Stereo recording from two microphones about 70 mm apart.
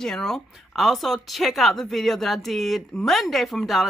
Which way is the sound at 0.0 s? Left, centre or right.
Centre.